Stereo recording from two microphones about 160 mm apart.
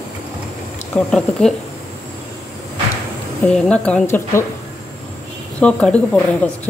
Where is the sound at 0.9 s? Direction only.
5° left (ahead or behind).